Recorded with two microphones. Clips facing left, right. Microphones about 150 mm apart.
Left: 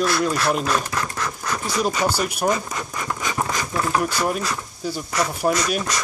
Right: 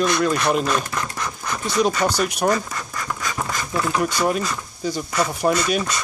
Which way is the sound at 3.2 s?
15° left (ahead or behind).